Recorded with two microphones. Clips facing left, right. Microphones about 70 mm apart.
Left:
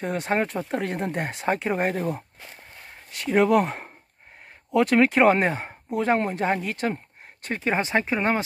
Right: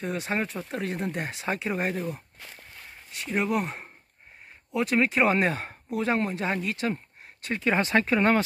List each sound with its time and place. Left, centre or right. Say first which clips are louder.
0.0 s speech: left 4 dB; left
3.1 s speech: left 8 dB; left
5.4 s speech: left 2 dB; left
7.7 s speech: right 1 dB; left